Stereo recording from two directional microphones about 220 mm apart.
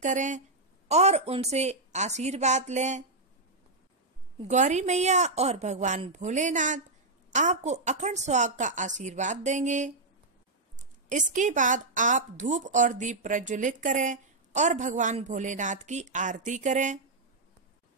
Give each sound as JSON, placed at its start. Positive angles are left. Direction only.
{"t": 0.0, "sound": "a woman's voice", "side_deg": -35}
{"t": 4.4, "sound": "a woman's voice", "side_deg": -30}